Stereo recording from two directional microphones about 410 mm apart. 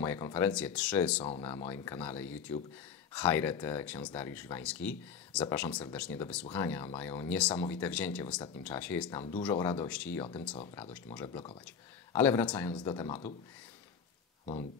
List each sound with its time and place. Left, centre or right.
0.0 s speech: centre
14.4 s speech: centre